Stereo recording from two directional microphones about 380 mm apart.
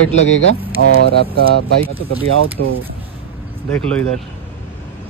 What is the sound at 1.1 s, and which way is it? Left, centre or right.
Speech, right.